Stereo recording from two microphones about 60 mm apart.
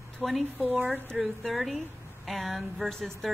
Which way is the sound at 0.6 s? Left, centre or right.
Right.